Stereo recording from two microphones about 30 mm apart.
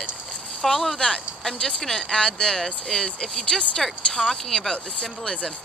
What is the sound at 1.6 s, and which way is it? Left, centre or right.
A woman's voice, left.